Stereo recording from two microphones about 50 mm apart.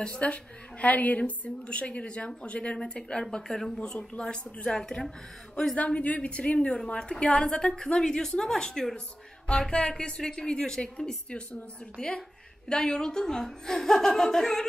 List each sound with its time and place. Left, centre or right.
0.1 s a woman's voice: left
5.9 s a woman's voice: left; by 14.7 s centre